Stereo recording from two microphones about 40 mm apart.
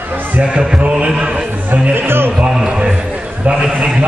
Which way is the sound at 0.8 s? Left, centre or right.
Right.